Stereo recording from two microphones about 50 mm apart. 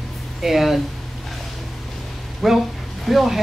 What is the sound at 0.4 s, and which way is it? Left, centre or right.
Speech, centre.